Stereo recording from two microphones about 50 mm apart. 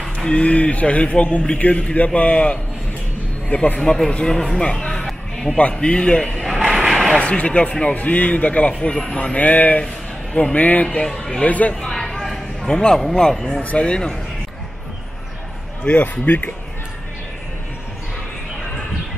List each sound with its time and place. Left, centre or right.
0.2 s a man's voice: left
4.1 s speech: centre
5.6 s a man's voice: left
6.4 s vehicle: centre
7.2 s a man's voice: left
11.9 s a sound: centre
13.3 s a man's voice: centre
15.8 s a man's voice: left